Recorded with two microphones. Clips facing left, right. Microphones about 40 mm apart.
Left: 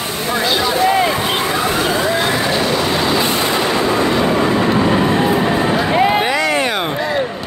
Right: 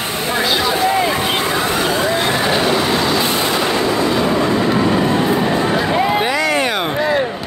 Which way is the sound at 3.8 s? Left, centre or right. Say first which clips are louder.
Left 1 dB; left.